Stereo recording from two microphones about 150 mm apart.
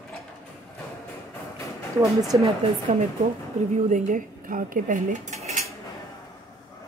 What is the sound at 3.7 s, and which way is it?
Speech, 60° right (ahead or behind).